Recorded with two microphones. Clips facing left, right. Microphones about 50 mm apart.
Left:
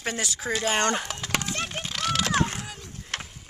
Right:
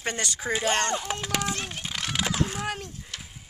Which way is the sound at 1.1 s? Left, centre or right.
Right.